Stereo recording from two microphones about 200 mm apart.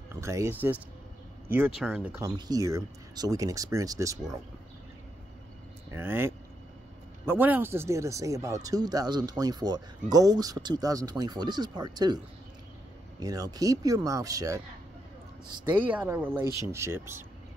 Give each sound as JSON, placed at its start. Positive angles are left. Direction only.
{"t": 0.1, "sound": "speech", "side_deg": -15}
{"t": 5.9, "sound": "speech", "side_deg": -10}
{"t": 13.2, "sound": "speech", "side_deg": -20}
{"t": 15.8, "sound": "speech", "side_deg": -10}